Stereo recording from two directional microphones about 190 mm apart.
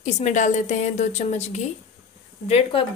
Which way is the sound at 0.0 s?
40° left (ahead or behind).